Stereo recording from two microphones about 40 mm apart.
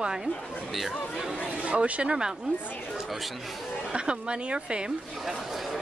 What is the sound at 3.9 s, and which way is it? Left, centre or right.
A woman's voice, right.